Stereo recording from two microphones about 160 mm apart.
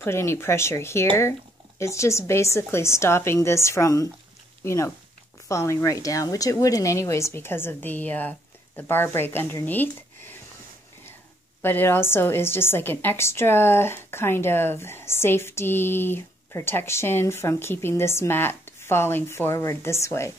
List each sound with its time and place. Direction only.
0.0 s a woman's voice: 15° left (ahead or behind)
11.6 s a woman's voice: 15° left (ahead or behind)